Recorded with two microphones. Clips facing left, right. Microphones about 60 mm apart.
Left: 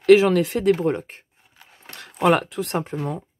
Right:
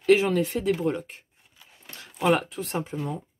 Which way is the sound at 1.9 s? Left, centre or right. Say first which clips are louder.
Left 4 dB; left.